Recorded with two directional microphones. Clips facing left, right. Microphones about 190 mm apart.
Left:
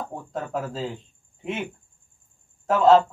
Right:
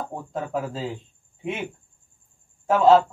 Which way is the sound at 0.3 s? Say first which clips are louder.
Right 1 dB; centre (ahead or behind).